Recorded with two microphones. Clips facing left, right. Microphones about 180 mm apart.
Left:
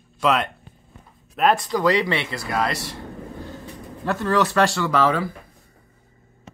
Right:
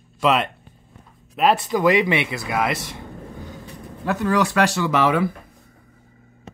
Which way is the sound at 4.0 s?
10° right (ahead or behind).